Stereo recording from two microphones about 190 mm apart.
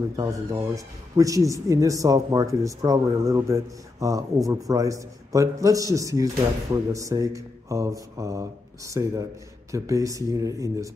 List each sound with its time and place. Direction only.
0.1 s speech: 15° right (ahead or behind)